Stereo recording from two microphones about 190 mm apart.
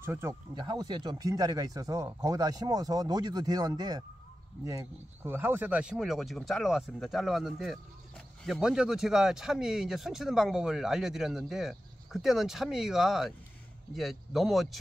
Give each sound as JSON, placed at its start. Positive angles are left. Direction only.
{"t": 0.0, "sound": "speech", "side_deg": -15}